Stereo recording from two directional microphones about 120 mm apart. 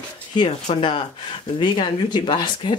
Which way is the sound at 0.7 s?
45° left (ahead or behind).